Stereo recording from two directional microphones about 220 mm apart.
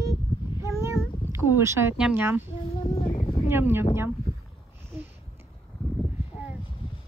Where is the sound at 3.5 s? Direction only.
10° right (ahead or behind).